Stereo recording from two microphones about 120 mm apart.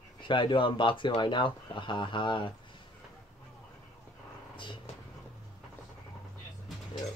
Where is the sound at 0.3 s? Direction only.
45° left (ahead or behind).